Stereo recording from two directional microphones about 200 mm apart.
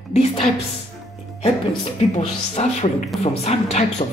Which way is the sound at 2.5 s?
35° left (ahead or behind).